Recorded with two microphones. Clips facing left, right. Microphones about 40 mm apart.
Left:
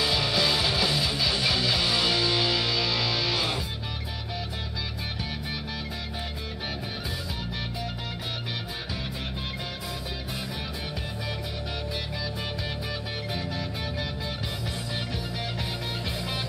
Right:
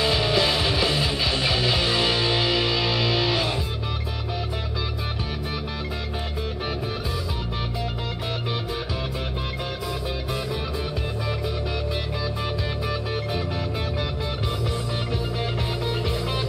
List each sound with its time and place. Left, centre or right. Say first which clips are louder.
0.0 s music: right 4 dB; right